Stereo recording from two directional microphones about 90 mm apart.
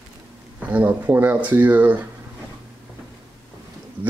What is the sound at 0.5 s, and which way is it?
Speech, 15° right (ahead or behind).